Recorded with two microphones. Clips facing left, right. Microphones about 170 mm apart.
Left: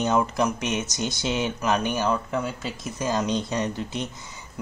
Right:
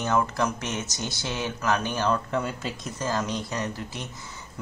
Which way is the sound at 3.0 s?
15° left (ahead or behind).